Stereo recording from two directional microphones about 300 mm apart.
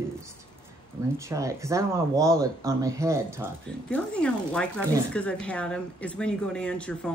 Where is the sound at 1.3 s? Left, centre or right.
Centre.